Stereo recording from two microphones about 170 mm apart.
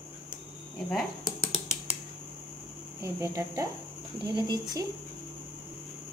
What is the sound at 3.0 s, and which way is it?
Speech, 15° right (ahead or behind).